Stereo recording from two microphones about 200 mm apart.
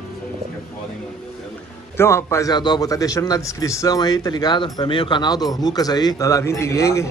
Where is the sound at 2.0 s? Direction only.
15° left (ahead or behind).